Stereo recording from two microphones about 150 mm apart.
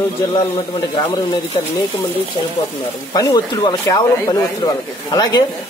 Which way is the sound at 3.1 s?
25° left (ahead or behind).